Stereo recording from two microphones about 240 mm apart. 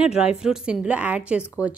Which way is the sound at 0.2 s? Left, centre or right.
Centre.